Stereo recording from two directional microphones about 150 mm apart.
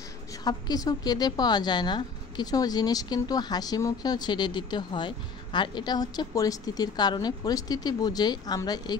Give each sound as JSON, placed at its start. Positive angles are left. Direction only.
{"t": 0.3, "sound": "a woman's voice", "side_deg": 25}